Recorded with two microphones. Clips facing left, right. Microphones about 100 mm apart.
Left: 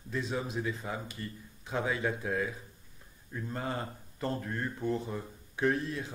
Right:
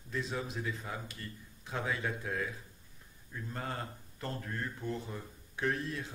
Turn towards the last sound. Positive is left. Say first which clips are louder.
# left 5 dB
turn(degrees=10)  # may be behind; listen again after turning